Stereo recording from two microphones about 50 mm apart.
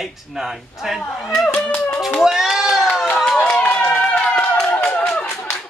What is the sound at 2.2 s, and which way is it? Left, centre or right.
Goat, centre.